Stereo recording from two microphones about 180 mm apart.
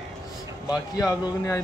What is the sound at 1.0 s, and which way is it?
Speech, 20° left (ahead or behind).